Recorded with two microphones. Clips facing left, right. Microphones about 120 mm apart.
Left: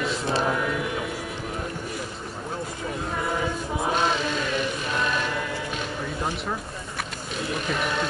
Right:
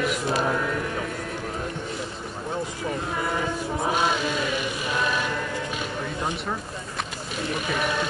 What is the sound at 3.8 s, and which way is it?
Chant, 5° right (ahead or behind).